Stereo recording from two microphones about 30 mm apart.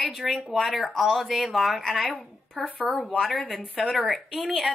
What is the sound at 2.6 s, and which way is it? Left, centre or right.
Speech, centre.